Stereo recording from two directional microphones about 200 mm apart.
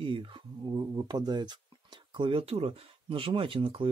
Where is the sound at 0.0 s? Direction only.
25° right (ahead or behind).